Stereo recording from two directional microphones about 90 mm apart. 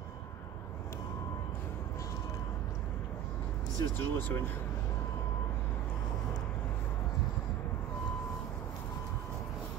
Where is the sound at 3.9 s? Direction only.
25° left (ahead or behind).